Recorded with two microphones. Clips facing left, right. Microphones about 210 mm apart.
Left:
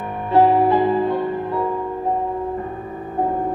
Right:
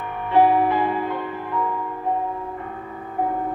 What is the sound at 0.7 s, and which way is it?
Music, 30° left (ahead or behind).